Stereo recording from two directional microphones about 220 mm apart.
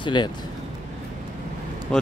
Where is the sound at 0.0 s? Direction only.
20° left (ahead or behind).